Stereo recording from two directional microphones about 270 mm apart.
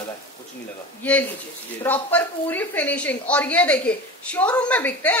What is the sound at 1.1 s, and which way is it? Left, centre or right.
Speech, centre.